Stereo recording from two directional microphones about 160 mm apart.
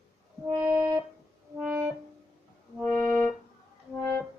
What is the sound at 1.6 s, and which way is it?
Music, 15° right (ahead or behind).